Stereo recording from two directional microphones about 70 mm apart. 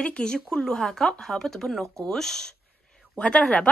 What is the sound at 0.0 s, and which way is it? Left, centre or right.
A woman's voice, centre.